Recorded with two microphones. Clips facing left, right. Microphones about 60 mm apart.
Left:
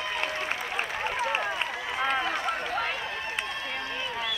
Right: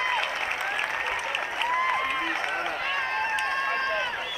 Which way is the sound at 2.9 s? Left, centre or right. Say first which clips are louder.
Right 6 dB; right.